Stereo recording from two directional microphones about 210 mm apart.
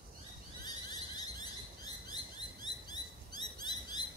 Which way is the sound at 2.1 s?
20° left (ahead or behind).